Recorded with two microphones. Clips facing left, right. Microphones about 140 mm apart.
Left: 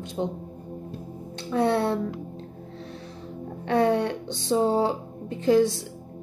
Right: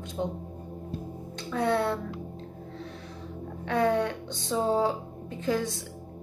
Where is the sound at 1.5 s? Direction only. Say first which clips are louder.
Left 4 dB; 25° left (ahead or behind).